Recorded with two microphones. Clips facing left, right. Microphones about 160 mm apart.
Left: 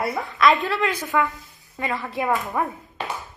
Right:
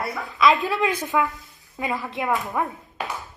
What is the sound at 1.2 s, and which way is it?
Speech, centre (ahead or behind).